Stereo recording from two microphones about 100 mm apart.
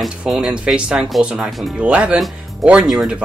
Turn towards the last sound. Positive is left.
turn(degrees=-10)  # may be behind; listen again after turning